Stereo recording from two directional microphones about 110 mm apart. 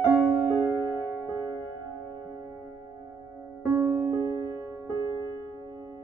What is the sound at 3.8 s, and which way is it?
Music, 20° right (ahead or behind).